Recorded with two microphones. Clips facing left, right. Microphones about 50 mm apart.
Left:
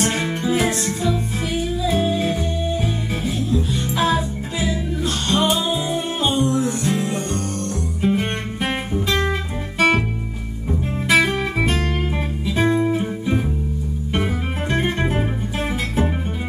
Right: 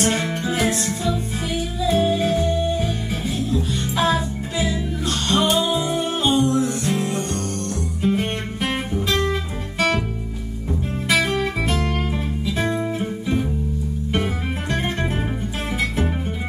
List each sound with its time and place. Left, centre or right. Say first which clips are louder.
0.0 s music: even; centre
11.1 s music: left 3 dB; centre
14.1 s music: left 1 dB; centre